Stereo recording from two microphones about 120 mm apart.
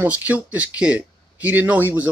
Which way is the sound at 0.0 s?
15° right (ahead or behind).